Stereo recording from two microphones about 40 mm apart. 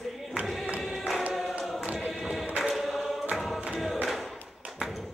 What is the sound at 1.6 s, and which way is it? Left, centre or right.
Choir, centre.